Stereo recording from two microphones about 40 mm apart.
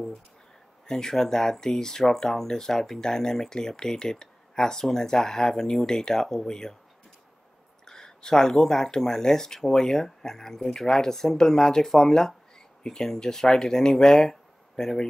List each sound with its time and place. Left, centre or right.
0.8 s speech: centre
7.8 s speech: centre